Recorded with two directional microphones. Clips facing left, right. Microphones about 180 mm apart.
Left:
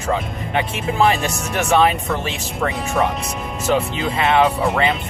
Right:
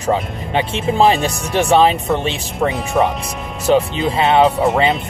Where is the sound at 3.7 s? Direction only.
30° right (ahead or behind).